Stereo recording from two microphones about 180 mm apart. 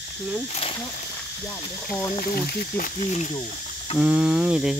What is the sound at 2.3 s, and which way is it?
Speech, 55° left (ahead or behind).